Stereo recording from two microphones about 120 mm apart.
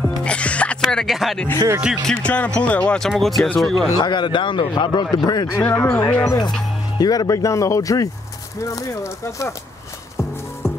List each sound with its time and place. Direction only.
0.2 s music: 10° left (ahead or behind)
0.9 s speech: centre (ahead or behind)
2.2 s speech: 10° left (ahead or behind)
4.0 s a man's voice: 40° left (ahead or behind)
5.6 s speech: 15° left (ahead or behind)
6.2 s a man's voice: 30° left (ahead or behind)